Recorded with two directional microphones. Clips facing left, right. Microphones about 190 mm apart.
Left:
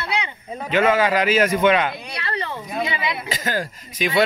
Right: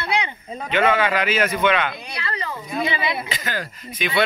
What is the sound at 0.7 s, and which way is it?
Speech, 40° left (ahead or behind).